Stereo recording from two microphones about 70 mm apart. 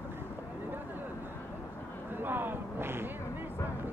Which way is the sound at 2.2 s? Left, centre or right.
Right.